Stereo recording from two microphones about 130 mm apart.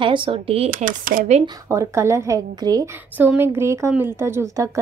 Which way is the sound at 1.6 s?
20° right (ahead or behind).